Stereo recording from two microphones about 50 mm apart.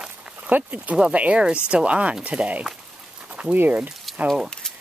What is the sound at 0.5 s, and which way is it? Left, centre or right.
Speech, right.